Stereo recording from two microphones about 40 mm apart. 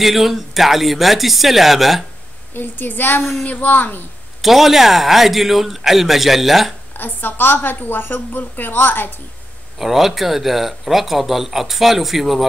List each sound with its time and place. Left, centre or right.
0.0 s speech: centre
2.5 s a woman's voice: left
4.4 s speech: centre
7.0 s a woman's voice: left
9.8 s speech: centre